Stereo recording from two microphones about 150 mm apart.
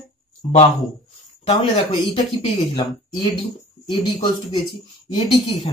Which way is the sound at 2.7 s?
30° left (ahead or behind).